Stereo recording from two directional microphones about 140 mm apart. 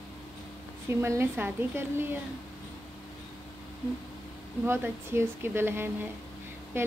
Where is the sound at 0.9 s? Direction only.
20° right (ahead or behind).